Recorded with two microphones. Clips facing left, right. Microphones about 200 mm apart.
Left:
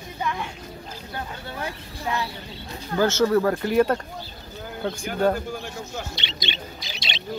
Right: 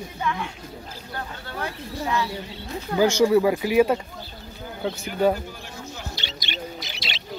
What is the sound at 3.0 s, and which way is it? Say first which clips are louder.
Speech: right 2 dB; 10° right (ahead or behind).